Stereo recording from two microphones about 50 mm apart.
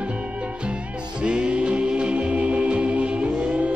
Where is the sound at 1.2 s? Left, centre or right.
Right.